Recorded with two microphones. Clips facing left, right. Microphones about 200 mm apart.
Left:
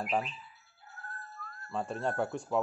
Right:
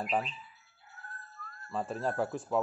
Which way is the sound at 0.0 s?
Centre (ahead or behind).